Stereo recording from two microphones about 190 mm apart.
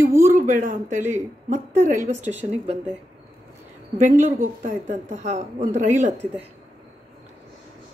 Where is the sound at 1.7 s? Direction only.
15° right (ahead or behind).